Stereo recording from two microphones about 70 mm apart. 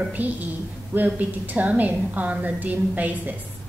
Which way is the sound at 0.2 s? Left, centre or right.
Right.